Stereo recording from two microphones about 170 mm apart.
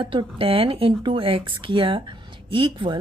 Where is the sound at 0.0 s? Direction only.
30° right (ahead or behind).